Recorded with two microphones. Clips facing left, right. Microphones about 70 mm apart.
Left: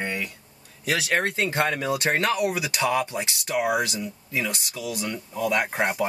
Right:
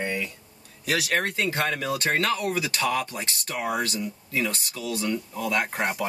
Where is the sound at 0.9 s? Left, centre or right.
Left.